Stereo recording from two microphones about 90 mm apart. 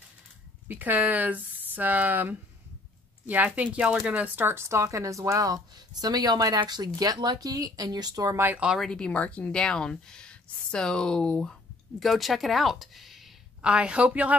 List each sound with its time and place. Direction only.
0.7 s speech: 20° right (ahead or behind)
4.1 s speech: 20° right (ahead or behind); by 8.4 s 45° right (ahead or behind)
8.7 s speech: 5° left (ahead or behind)
13.6 s speech: 10° right (ahead or behind)